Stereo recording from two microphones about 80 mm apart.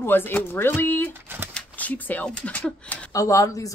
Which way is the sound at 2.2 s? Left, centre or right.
Centre.